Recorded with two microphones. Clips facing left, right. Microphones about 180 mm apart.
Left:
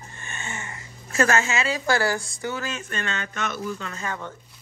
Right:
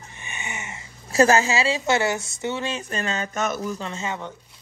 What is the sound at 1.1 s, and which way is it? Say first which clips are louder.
Speech: right 4 dB; 35° right (ahead or behind).